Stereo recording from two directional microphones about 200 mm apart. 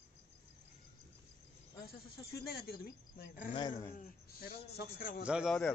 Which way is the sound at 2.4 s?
50° left (ahead or behind).